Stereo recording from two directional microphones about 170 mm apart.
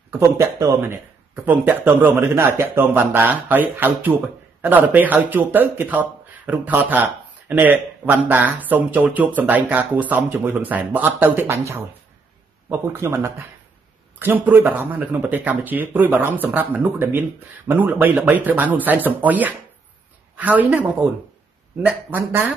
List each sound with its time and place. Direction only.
0.2 s speech: 20° right (ahead or behind)